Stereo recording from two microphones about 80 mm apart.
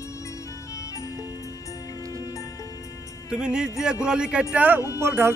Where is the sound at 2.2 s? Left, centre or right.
Left.